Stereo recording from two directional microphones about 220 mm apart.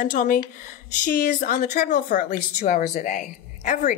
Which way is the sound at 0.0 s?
40° left (ahead or behind).